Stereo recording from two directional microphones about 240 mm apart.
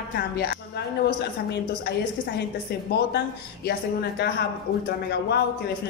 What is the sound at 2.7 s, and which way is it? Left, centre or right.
A woman's voice, left.